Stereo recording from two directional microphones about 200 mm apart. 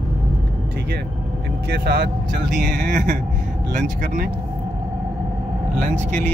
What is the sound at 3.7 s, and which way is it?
Speech, 45° right (ahead or behind).